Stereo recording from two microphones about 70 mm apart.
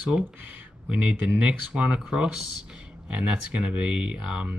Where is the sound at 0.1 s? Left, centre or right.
Centre.